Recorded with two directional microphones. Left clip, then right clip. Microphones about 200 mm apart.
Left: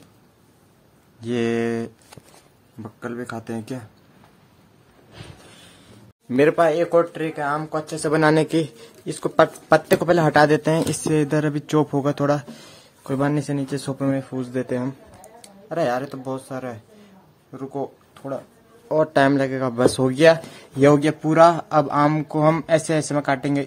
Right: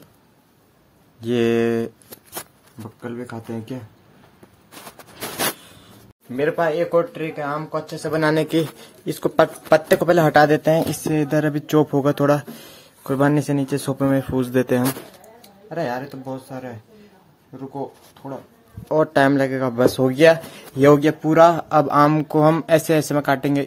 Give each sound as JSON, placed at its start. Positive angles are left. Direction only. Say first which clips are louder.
{"t": 1.2, "sound": "speech", "louder": "right 4 dB", "side_deg": -10}
{"t": 3.0, "sound": "speech", "louder": "left 1 dB", "side_deg": 15}
{"t": 6.5, "sound": "speech", "louder": "left 1 dB", "side_deg": 15}
{"t": 8.8, "sound": "speech", "louder": "right 3 dB", "side_deg": -5}
{"t": 15.4, "sound": "speech", "louder": "left 3 dB", "side_deg": 25}
{"t": 18.9, "sound": "speech", "louder": "right 1 dB", "side_deg": 0}